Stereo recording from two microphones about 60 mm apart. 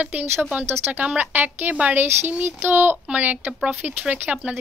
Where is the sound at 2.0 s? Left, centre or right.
Right.